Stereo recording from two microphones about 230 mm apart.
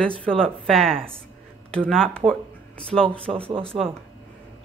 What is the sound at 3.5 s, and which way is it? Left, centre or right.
Speech, right.